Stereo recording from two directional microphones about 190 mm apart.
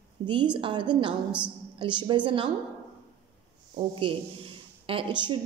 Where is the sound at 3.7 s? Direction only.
30° right (ahead or behind).